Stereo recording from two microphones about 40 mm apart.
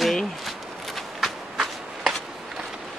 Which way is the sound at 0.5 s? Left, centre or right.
Centre.